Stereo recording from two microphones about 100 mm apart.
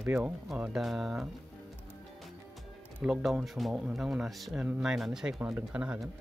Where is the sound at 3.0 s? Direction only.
5° right (ahead or behind).